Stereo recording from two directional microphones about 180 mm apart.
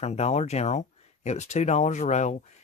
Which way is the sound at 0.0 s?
35° left (ahead or behind).